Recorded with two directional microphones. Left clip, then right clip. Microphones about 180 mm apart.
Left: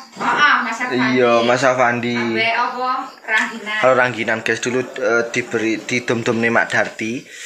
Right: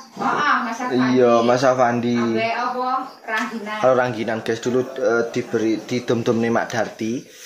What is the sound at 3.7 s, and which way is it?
Speech, 5° right (ahead or behind).